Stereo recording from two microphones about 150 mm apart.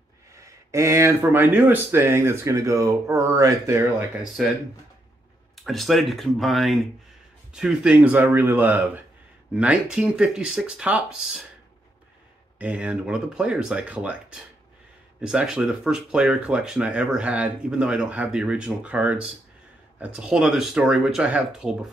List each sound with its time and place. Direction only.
0.3 s speech: 20° right (ahead or behind)
4.2 s speech: centre (ahead or behind)
5.6 s speech: centre (ahead or behind)
12.5 s speech: 10° right (ahead or behind)